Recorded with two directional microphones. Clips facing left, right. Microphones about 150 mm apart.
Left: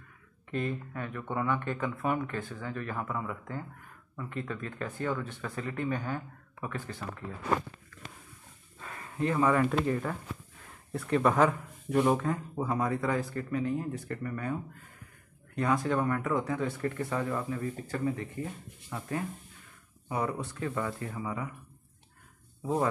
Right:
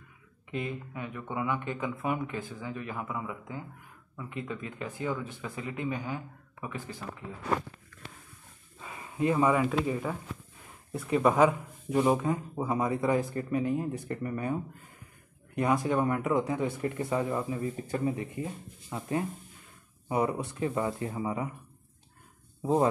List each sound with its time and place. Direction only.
0.5 s speech: 10° right (ahead or behind)
8.7 s speech: 10° right (ahead or behind)
22.6 s speech: 25° right (ahead or behind)